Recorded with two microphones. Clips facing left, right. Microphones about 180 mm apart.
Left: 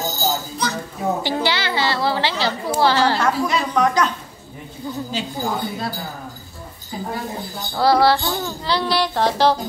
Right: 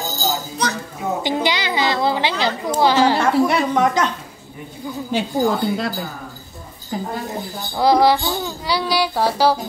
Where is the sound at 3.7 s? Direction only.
25° right (ahead or behind).